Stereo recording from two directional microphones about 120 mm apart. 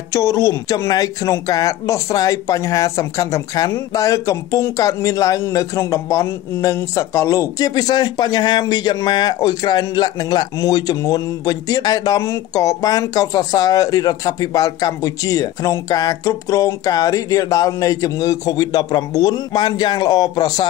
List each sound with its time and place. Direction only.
0.1 s speech: 25° left (ahead or behind)